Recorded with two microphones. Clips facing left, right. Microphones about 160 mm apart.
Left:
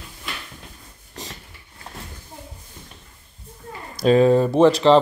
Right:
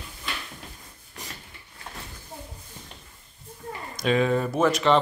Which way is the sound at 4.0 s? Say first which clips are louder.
Left 8 dB; 35° left (ahead or behind).